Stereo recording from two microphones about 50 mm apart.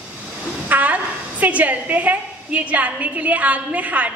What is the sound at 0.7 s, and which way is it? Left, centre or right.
A woman's voice, right.